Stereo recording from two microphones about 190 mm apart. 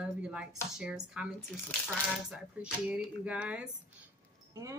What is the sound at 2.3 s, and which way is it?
Speech, 5° right (ahead or behind).